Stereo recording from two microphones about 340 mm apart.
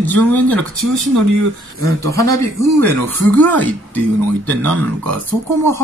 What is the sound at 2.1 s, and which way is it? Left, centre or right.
Speech, centre.